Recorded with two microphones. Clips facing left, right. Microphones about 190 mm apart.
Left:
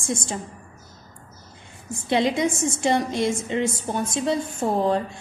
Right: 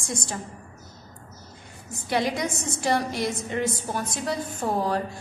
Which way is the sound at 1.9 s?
25° left (ahead or behind).